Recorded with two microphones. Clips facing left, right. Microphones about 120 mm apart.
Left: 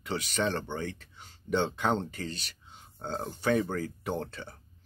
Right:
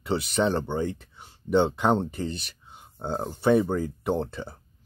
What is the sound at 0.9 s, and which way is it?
Speech, 20° right (ahead or behind).